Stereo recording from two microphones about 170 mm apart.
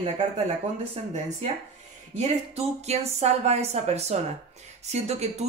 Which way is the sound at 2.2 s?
40° right (ahead or behind).